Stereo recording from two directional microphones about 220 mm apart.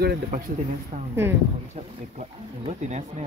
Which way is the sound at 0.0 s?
45° right (ahead or behind).